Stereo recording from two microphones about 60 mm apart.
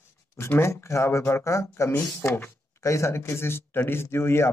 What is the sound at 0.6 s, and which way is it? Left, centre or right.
Speech, left.